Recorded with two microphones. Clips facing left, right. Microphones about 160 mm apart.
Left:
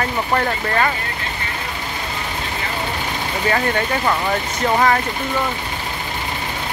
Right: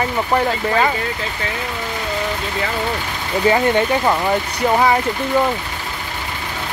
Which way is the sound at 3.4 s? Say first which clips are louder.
Right 5 dB; 20° right (ahead or behind).